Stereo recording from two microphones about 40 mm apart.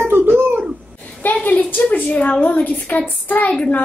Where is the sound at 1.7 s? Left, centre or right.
Left.